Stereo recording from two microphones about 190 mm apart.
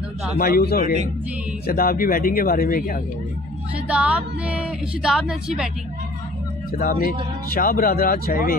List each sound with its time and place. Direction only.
0.4 s speech: 50° left (ahead or behind)
3.8 s a woman's voice: 5° right (ahead or behind)
6.8 s speech: 45° left (ahead or behind)